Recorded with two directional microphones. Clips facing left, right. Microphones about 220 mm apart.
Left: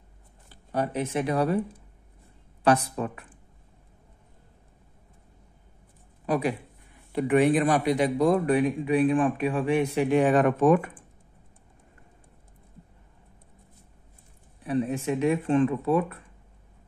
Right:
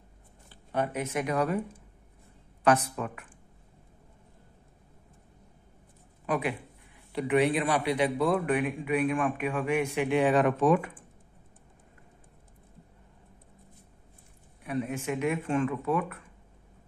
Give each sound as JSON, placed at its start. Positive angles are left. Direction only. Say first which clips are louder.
{"t": 0.7, "sound": "speech", "louder": "left 3 dB", "side_deg": 35}
{"t": 2.6, "sound": "speech", "louder": "left 2 dB", "side_deg": 35}
{"t": 6.2, "sound": "a man's voice", "louder": "left 4 dB", "side_deg": 40}
{"t": 7.1, "sound": "speech", "louder": "left 4 dB", "side_deg": 50}
{"t": 14.6, "sound": "speech", "louder": "left 5 dB", "side_deg": 35}